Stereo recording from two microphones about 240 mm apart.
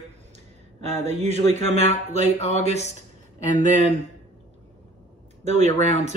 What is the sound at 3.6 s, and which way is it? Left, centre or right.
Speech, right.